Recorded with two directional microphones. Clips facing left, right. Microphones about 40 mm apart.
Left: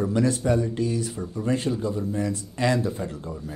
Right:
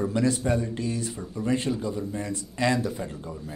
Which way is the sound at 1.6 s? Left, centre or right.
Centre.